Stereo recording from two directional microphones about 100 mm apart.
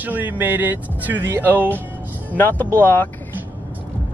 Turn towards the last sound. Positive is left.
turn(degrees=20)  # may be behind; listen again after turning